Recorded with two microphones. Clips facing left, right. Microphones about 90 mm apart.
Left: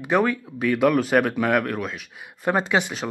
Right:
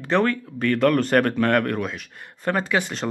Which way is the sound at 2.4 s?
20° left (ahead or behind).